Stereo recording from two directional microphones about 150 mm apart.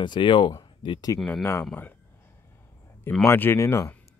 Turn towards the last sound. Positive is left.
turn(degrees=20)  # may be behind; listen again after turning